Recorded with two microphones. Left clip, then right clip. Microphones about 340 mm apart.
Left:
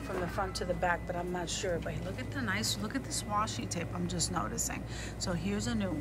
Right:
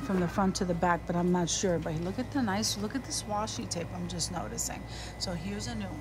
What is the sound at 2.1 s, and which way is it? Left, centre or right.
Speech, centre.